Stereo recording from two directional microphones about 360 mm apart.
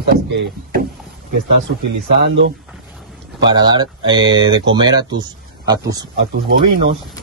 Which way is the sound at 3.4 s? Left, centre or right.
Centre.